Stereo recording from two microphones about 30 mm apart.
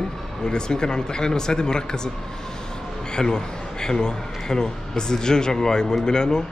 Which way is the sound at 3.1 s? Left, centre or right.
Left.